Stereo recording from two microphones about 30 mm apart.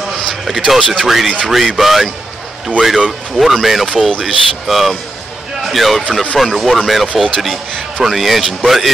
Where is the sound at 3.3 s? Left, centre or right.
Centre.